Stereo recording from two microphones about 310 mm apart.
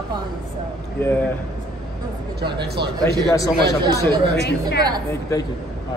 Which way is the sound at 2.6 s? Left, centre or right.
Right.